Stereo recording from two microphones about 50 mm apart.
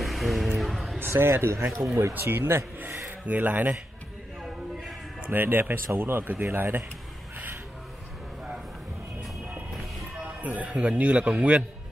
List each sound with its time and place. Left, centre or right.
0.0 s music: centre
0.9 s a man's voice: right
1.7 s speech: centre
2.1 s speech: right
3.3 s speech: right
5.3 s speech: right
10.4 s a man's voice: right